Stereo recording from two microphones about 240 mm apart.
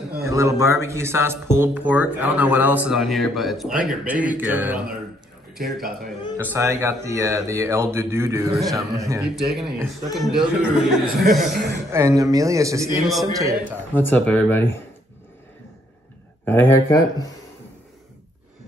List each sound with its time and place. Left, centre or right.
0.2 s a man's voice: centre
9.2 s a man's voice: centre
11.9 s speech: centre
13.9 s speech: centre
16.4 s speech: centre